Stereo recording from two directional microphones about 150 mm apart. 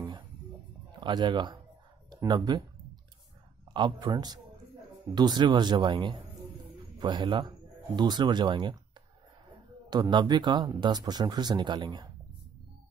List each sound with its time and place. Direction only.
1.0 s speech: 30° right (ahead or behind)
3.7 s speech: 30° right (ahead or behind)
9.8 s speech: 30° right (ahead or behind)